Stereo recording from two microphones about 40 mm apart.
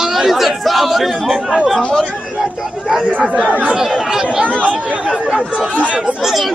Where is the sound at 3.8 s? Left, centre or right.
Centre.